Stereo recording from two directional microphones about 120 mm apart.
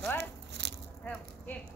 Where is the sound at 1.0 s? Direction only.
10° left (ahead or behind).